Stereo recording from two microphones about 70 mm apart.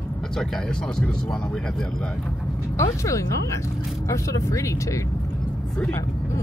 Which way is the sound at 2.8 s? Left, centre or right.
Left.